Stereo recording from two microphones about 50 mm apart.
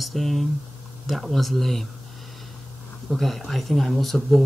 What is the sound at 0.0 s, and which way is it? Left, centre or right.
Speech, centre.